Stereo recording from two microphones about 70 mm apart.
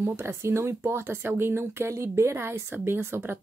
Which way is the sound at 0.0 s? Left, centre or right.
Right.